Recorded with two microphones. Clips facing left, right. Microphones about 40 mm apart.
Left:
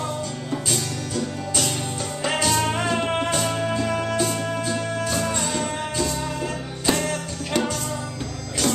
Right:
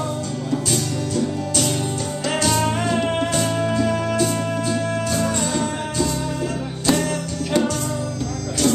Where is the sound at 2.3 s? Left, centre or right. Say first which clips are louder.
Right 2 dB; centre.